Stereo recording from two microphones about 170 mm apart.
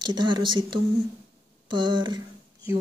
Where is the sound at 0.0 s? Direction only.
25° right (ahead or behind).